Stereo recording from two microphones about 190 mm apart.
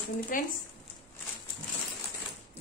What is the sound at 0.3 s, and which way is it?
Speech, 45° left (ahead or behind).